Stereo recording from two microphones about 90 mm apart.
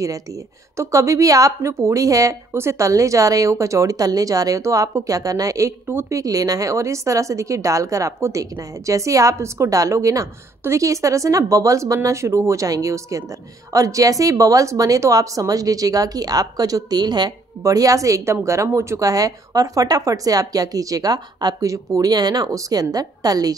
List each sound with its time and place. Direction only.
0.0 s a woman's voice: 40° right (ahead or behind)
6.1 s a woman's voice: 40° right (ahead or behind)